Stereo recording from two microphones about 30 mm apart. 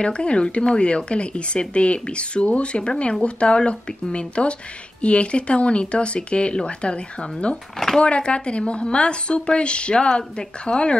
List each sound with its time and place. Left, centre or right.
0.0 s a woman's voice: left